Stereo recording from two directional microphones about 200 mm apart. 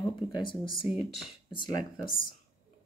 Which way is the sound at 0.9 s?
Centre (ahead or behind).